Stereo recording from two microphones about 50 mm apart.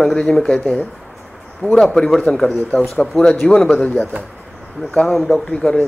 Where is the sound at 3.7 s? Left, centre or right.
Left.